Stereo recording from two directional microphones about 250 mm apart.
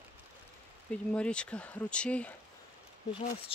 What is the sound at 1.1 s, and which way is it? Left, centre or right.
Speech, centre.